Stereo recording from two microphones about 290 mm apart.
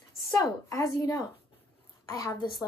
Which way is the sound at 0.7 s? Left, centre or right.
Centre.